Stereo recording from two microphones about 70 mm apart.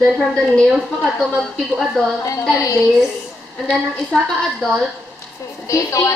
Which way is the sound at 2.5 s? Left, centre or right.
Left.